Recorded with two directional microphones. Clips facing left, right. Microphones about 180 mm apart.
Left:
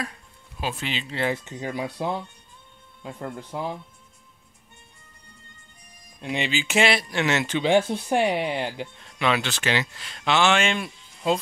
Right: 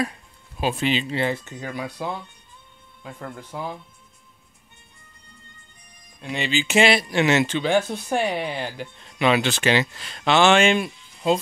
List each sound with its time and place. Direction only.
0.6 s speech: 20° right (ahead or behind)
1.1 s speech: 5° left (ahead or behind)
1.4 s speech: 25° left (ahead or behind)
6.2 s music: 15° left (ahead or behind)
6.6 s speech: centre (ahead or behind)
7.4 s speech: 20° left (ahead or behind)
9.0 s speech: 10° right (ahead or behind)
9.9 s speech: 40° right (ahead or behind)
10.6 s speech: 15° right (ahead or behind)